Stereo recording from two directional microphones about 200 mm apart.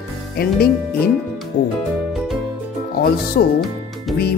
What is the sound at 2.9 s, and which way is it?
Speech, 50° left (ahead or behind).